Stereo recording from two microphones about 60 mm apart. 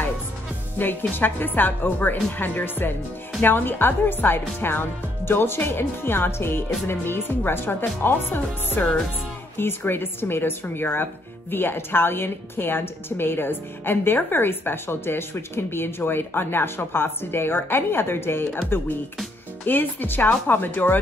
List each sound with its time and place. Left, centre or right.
0.7 s a woman's voice: left
19.6 s a woman's voice: left